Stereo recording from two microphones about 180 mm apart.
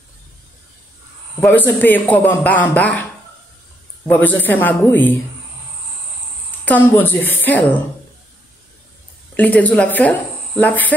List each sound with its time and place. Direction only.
1.4 s a man's voice: 10° left (ahead or behind)
4.1 s a man's voice: 10° left (ahead or behind)
6.6 s a man's voice: 10° left (ahead or behind)
9.4 s a man's voice: 10° left (ahead or behind)